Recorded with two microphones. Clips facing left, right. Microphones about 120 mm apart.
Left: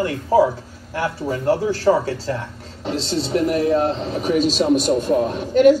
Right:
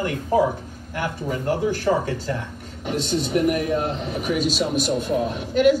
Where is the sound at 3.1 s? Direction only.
35° left (ahead or behind).